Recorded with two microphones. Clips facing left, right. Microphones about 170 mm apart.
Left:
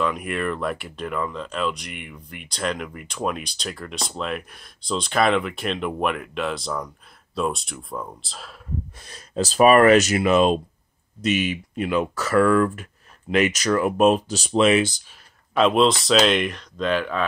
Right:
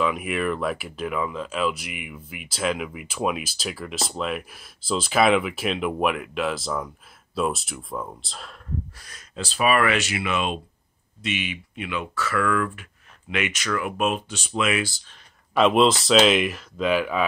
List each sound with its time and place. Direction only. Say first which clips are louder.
0.0 s speech: even; centre (ahead or behind)
8.9 s speech: left 4 dB; 25° left (ahead or behind)
9.3 s speech: left 7 dB; 40° left (ahead or behind); by 15.0 s 25° left (ahead or behind)
15.5 s speech: even; centre (ahead or behind)